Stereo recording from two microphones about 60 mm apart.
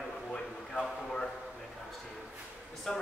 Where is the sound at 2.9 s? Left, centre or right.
Centre.